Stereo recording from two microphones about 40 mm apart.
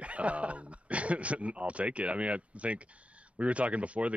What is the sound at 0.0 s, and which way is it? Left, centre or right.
Speech, right.